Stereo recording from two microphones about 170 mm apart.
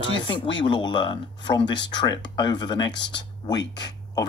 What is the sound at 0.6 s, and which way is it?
Speech, 25° left (ahead or behind).